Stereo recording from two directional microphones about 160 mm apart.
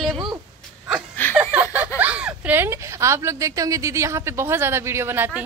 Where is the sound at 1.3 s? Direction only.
5° right (ahead or behind).